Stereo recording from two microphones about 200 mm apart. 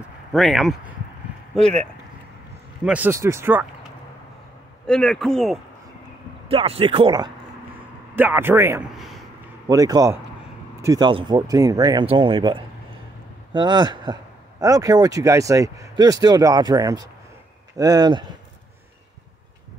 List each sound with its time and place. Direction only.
0.3 s a man's voice: centre (ahead or behind)
2.8 s speech: 5° right (ahead or behind)
4.8 s a man's voice: 5° left (ahead or behind)
6.5 s speech: 30° right (ahead or behind)
8.2 s speech: 10° right (ahead or behind)
8.9 s a sound: centre (ahead or behind)
9.7 s speech: 20° right (ahead or behind)